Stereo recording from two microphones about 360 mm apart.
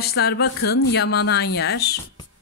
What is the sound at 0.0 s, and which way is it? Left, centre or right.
A woman's voice, left.